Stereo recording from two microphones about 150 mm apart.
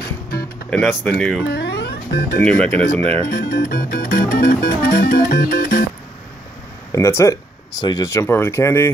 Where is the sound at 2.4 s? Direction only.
5° left (ahead or behind).